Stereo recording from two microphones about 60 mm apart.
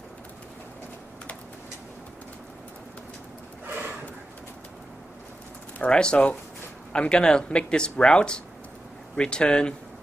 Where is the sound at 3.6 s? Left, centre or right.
Right.